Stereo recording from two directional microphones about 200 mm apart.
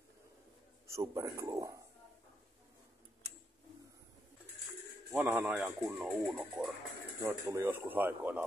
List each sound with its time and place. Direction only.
0.8 s speech: 15° right (ahead or behind)
5.1 s speech: 10° right (ahead or behind)